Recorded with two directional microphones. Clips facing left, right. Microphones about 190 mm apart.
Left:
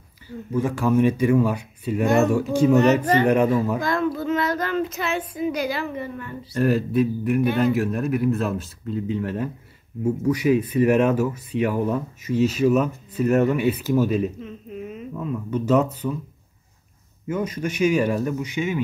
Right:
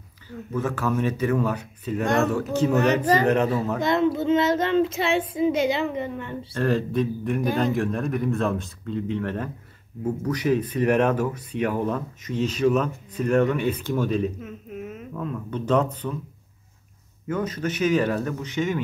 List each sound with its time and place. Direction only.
0.5 s speech: 15° left (ahead or behind)
3.8 s speech: 25° right (ahead or behind)
6.5 s speech: 10° left (ahead or behind)
14.4 s a sound: 5° right (ahead or behind)
15.5 s speech: 10° left (ahead or behind)
17.3 s speech: 10° left (ahead or behind)